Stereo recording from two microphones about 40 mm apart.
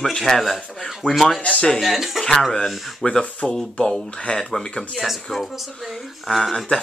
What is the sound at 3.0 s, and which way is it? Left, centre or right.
Speech, centre.